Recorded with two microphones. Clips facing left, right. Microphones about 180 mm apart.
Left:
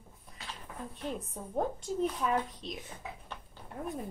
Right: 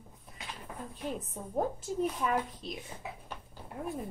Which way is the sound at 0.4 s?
15° right (ahead or behind).